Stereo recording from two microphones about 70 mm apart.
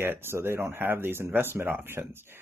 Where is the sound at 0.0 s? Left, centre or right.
Right.